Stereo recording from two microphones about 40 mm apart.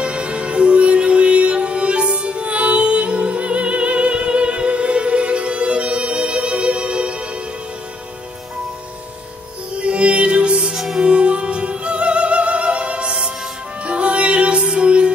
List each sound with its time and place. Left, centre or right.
0.0 s music: right
9.8 s music: right